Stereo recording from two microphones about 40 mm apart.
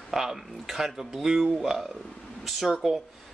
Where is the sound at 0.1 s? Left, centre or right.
Centre.